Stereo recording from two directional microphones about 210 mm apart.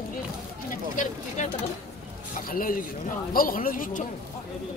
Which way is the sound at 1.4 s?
35° left (ahead or behind).